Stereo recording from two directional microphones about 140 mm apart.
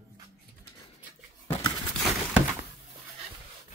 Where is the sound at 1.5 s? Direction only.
30° left (ahead or behind).